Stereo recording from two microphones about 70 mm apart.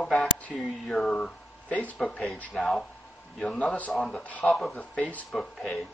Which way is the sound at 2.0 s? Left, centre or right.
Centre.